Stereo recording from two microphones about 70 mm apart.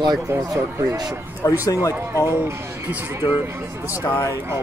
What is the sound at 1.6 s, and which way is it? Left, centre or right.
Speech, left.